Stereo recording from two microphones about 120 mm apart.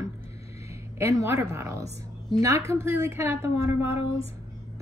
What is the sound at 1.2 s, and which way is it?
A woman's voice, 25° right (ahead or behind).